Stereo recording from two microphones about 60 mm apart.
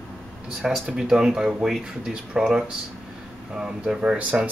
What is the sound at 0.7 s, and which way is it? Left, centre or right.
Speech, centre.